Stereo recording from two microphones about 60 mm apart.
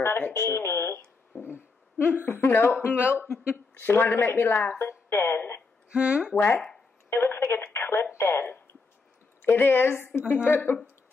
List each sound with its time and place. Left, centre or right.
0.0 s a woman's voice: left
4.7 s speech: left
5.9 s speech: centre
7.1 s a woman's voice: left